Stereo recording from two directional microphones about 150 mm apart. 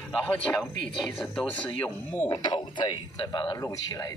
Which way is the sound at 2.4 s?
30° left (ahead or behind).